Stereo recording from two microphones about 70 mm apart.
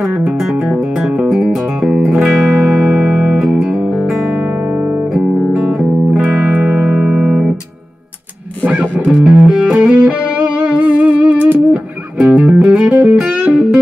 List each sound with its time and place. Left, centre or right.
0.0 s music: centre
3.7 s music: centre; by 7.5 s right
8.6 s music: right